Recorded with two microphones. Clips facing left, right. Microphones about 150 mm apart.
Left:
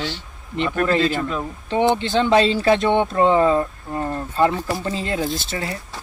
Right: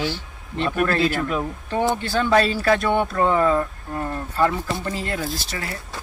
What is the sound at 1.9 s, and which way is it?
Speech, 20° left (ahead or behind).